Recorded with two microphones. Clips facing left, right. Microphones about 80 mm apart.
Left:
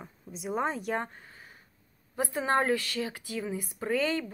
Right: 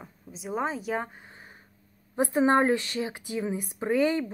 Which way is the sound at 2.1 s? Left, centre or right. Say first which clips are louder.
Right 6 dB; right.